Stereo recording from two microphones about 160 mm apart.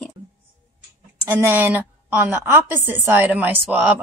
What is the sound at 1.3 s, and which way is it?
A woman's voice, 10° right (ahead or behind).